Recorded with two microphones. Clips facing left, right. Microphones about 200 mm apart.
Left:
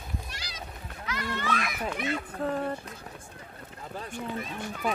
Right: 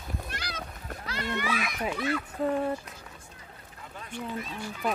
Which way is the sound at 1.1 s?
30° right (ahead or behind).